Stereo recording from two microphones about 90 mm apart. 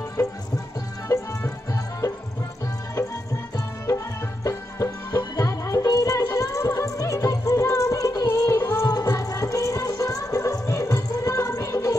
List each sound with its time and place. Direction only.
1.0 s music: 35° left (ahead or behind)
3.5 s music: 35° left (ahead or behind)